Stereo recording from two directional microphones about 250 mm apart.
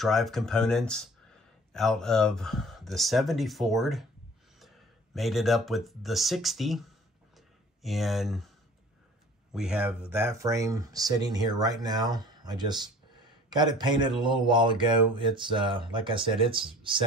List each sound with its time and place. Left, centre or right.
0.0 s speech: centre
9.5 s speech: centre